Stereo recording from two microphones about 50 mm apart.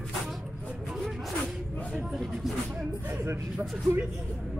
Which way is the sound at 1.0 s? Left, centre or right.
Centre.